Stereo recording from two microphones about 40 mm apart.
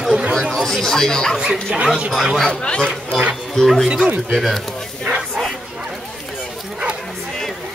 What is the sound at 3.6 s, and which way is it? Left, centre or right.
Speech, centre.